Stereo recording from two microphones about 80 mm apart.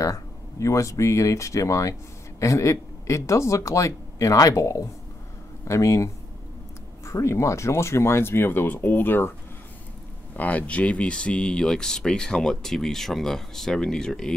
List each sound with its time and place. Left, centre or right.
0.0 s speech: left
10.3 s speech: centre